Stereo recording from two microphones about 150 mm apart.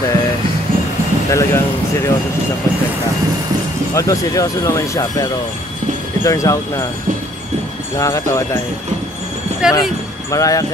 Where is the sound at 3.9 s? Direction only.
20° left (ahead or behind).